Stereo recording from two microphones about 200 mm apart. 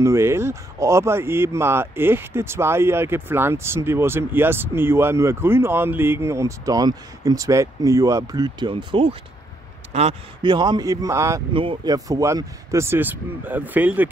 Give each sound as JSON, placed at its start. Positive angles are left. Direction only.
{"t": 0.0, "sound": "speech", "side_deg": -15}
{"t": 11.5, "sound": "speech", "side_deg": -25}